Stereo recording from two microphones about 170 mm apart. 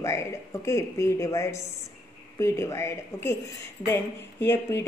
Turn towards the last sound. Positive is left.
turn(degrees=15)  # may be behind; listen again after turning